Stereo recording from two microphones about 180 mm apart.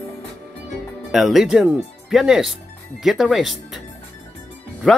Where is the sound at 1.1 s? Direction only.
Centre (ahead or behind).